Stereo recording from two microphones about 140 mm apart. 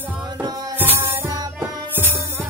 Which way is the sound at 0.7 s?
15° right (ahead or behind).